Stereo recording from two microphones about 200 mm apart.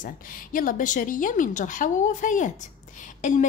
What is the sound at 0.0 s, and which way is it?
A woman's voice, 45° left (ahead or behind).